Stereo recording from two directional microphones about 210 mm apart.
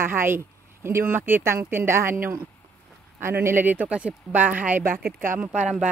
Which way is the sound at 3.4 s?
10° right (ahead or behind).